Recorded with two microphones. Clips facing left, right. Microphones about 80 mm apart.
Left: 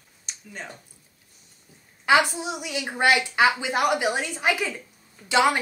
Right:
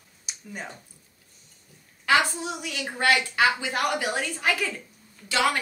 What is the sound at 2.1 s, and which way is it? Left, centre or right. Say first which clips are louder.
A woman's voice: left 3 dB; centre.